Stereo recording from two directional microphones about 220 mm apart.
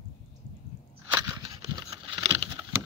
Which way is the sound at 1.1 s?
15° right (ahead or behind).